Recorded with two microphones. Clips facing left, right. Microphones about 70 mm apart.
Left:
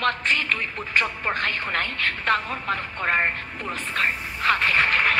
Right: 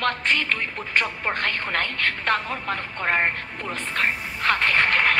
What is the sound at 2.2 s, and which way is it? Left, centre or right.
Speech, left.